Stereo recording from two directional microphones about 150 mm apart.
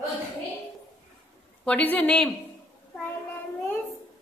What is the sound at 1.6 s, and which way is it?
Speech, 10° left (ahead or behind).